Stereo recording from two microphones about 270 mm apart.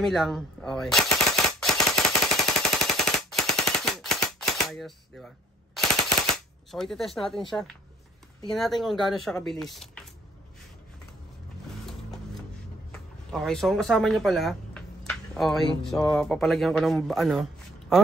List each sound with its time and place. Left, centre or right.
0.0 s gunshot: centre
2.3 s machine gun: centre
7.4 s speech: centre
12.9 s a sound: centre
15.8 s speech: centre